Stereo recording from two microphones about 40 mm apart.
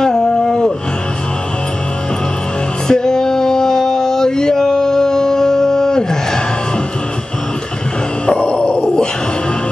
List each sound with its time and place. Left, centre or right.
0.0 s a sound: centre
2.9 s male singing: centre
8.3 s grunt: left